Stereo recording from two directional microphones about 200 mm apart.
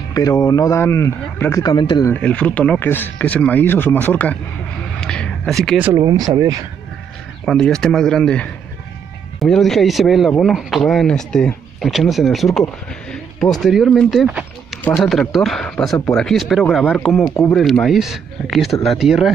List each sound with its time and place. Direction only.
0.1 s speech: 15° left (ahead or behind)
2.1 s speech: 5° left (ahead or behind)
5.0 s a sound: 5° left (ahead or behind)
5.8 s speech: 15° right (ahead or behind)
7.4 s speech: 5° left (ahead or behind)